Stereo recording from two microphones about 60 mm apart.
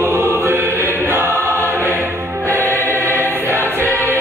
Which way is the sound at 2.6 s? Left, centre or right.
Left.